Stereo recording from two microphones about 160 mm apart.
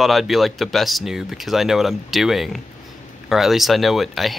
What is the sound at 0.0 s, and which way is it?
Speech, centre (ahead or behind).